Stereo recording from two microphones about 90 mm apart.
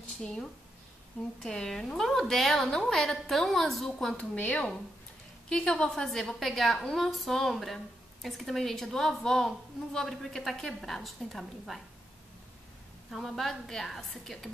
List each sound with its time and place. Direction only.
0.2 s a woman's voice: 10° left (ahead or behind)
13.1 s a woman's voice: centre (ahead or behind)